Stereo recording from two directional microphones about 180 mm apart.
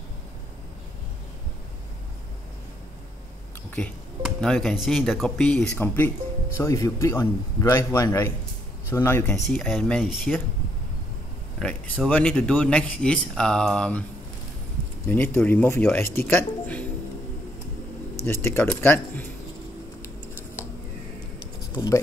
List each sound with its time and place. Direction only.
3.7 s speech: 5° left (ahead or behind)
11.6 s speech: 10° left (ahead or behind)
15.0 s speech: 10° left (ahead or behind)
18.2 s speech: 15° left (ahead or behind)
21.7 s speech: 15° left (ahead or behind)